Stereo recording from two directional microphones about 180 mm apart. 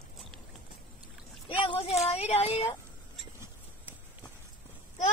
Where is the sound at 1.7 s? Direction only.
35° left (ahead or behind).